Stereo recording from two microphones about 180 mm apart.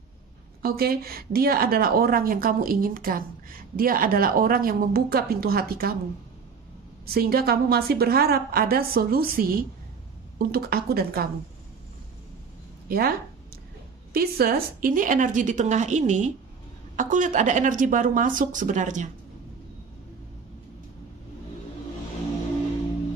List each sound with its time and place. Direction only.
0.6 s a woman's voice: 55° right (ahead or behind)
7.1 s speech: 55° right (ahead or behind)
12.8 s speech: 55° right (ahead or behind)
14.1 s a woman's voice: 60° right (ahead or behind)